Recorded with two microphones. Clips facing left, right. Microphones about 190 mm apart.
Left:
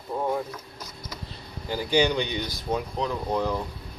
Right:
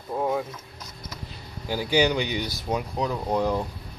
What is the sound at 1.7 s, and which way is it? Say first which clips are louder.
Speech: right 1 dB; 5° right (ahead or behind).